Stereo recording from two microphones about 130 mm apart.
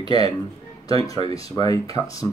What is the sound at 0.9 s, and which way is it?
Speech, 25° left (ahead or behind).